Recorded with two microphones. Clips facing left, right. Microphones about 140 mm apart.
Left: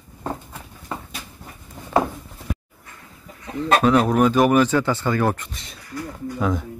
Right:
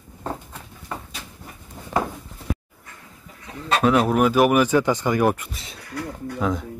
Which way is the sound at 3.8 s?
5° right (ahead or behind).